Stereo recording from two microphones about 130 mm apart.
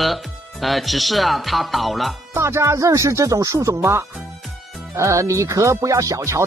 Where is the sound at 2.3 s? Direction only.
20° right (ahead or behind).